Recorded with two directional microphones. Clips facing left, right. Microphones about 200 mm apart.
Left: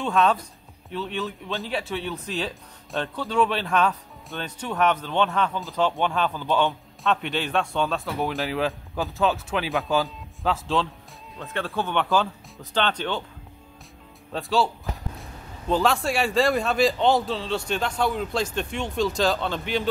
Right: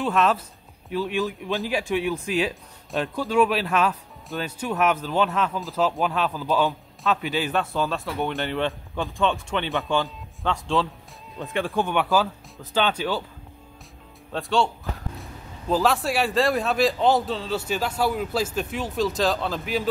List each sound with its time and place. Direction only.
0.0 s speech: centre (ahead or behind)
11.5 s speech: 15° right (ahead or behind)
14.3 s speech: centre (ahead or behind)
15.7 s speech: centre (ahead or behind)